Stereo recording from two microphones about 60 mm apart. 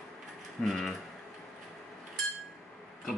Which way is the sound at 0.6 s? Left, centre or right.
Centre.